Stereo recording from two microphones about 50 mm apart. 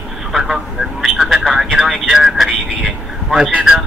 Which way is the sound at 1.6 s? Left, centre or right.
Centre.